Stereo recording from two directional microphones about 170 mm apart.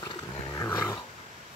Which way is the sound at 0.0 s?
25° left (ahead or behind).